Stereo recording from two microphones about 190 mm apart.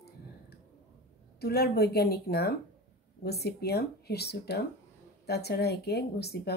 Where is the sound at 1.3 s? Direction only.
55° left (ahead or behind).